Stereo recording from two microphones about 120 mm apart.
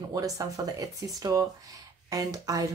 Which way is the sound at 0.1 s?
30° right (ahead or behind).